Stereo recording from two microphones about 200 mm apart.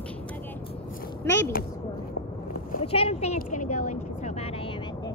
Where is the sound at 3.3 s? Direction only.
40° left (ahead or behind).